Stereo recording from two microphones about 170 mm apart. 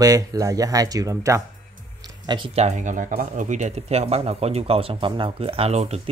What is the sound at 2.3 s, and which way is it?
Speech, 35° right (ahead or behind).